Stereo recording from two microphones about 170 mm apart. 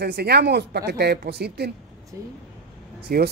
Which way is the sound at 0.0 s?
70° right (ahead or behind).